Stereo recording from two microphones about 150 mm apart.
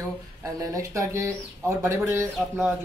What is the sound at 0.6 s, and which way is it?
A man's voice, 20° right (ahead or behind).